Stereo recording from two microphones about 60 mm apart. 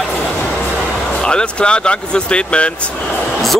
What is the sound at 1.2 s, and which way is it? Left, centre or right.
Speech, centre.